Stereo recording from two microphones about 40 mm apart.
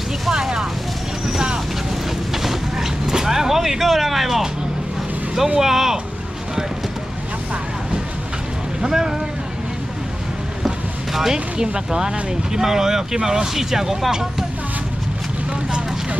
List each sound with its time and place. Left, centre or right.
0.3 s a sound: centre
1.2 s vehicle: centre
5.6 s speech: centre
8.8 s speech: centre
11.3 s speech: right